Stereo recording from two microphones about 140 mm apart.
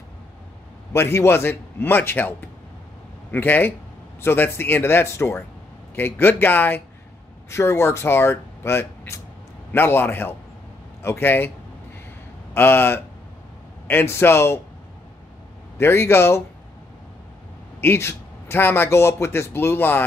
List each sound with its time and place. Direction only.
0.9 s a man's voice: 15° left (ahead or behind)
12.5 s a man's voice: 15° left (ahead or behind)
15.8 s a man's voice: 15° left (ahead or behind)
17.7 s a man's voice: 15° left (ahead or behind)